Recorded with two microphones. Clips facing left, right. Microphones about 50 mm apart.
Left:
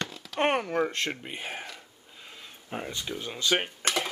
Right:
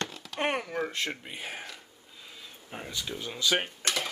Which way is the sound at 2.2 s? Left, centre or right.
Left.